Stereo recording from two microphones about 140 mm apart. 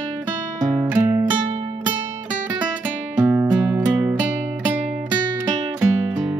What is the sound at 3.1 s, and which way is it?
Music, 10° right (ahead or behind).